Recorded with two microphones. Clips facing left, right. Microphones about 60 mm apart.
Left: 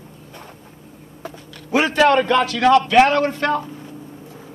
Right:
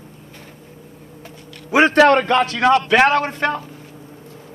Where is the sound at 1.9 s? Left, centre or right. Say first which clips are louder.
Left 1 dB; right.